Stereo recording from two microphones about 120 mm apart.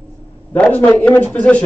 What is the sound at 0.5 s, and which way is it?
Speech, 10° left (ahead or behind).